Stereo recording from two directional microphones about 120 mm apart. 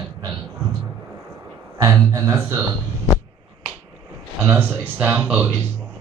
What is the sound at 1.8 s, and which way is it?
Speech, 30° right (ahead or behind).